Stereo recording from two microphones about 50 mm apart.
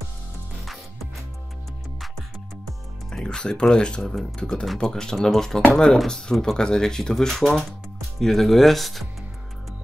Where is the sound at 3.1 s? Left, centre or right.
Centre.